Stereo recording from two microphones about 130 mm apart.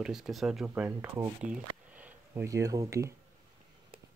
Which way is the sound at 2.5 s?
25° right (ahead or behind).